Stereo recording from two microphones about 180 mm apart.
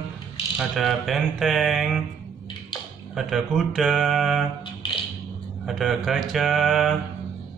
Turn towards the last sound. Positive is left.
turn(degrees=0)  # may be behind; listen again after turning